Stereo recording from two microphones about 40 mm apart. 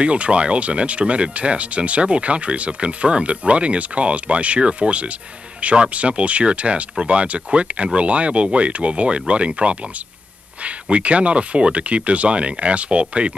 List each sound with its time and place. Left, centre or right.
0.0 s speech: right